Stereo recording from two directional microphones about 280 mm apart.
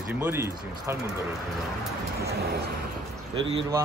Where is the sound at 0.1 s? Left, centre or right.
Centre.